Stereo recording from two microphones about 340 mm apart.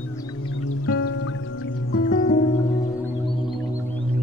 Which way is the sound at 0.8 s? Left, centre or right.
Left.